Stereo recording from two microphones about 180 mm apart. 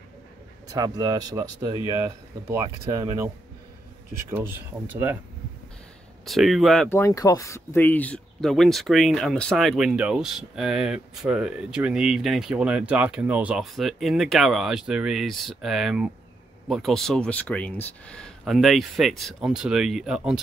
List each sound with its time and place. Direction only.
0.7 s speech: 20° right (ahead or behind)
4.3 s speech: 10° right (ahead or behind)
6.2 s speech: centre (ahead or behind)
6.9 s speech: 15° left (ahead or behind); by 20.3 s centre (ahead or behind)